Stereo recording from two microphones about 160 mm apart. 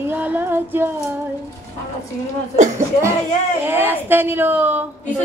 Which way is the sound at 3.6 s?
15° right (ahead or behind).